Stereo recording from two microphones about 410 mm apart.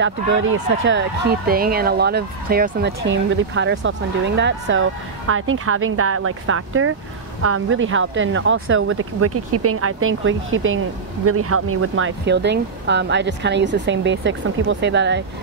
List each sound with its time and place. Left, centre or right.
0.0 s speech: right